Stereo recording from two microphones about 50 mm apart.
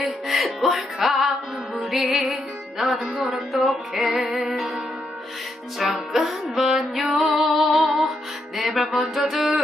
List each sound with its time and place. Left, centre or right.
0.0 s music: centre
5.8 s music: centre